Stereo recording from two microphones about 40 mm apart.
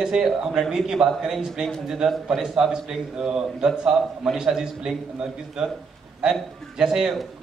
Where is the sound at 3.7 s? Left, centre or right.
Centre.